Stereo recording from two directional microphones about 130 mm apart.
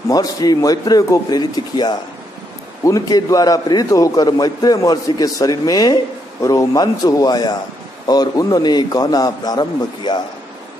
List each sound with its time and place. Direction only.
0.1 s a man's voice: 30° left (ahead or behind)